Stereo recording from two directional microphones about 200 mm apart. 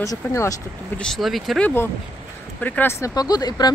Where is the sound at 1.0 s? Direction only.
Centre (ahead or behind).